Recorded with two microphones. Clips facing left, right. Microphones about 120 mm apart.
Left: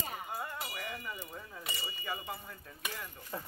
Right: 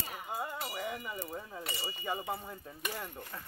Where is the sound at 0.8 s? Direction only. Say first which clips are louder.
Right 4 dB; 15° right (ahead or behind).